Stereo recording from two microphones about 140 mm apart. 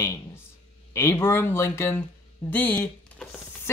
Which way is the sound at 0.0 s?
20° left (ahead or behind).